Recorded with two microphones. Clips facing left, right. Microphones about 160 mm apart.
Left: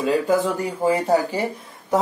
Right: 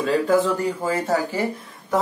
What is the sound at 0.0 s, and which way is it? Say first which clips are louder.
Speech: even; 15° left (ahead or behind).